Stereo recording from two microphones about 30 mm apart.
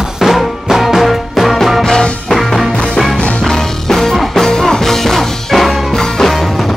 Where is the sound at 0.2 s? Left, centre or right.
Centre.